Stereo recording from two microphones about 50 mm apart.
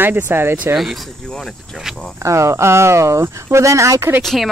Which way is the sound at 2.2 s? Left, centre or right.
Right.